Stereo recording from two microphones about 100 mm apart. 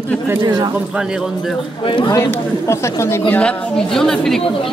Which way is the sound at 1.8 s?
55° left (ahead or behind).